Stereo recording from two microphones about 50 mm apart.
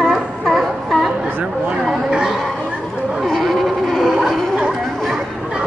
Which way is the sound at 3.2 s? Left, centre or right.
Centre.